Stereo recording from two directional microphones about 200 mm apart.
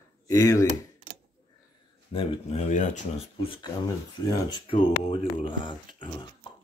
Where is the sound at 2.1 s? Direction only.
35° left (ahead or behind).